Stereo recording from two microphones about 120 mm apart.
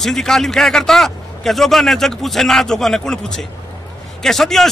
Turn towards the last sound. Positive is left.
turn(degrees=0)  # may be behind; listen again after turning